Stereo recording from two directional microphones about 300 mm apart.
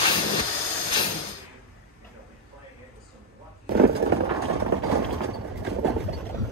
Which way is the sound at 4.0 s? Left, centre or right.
Right.